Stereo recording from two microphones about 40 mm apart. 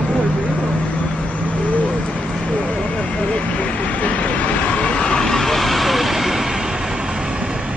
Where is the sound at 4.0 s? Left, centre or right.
Left.